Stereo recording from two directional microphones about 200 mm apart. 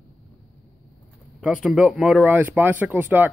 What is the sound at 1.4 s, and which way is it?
Speech, 5° right (ahead or behind).